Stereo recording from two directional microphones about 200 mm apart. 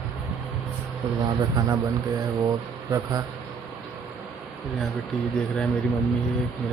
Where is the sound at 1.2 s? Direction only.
20° right (ahead or behind).